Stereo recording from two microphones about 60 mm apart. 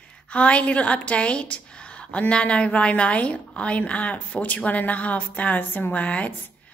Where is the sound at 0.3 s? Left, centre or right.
Left.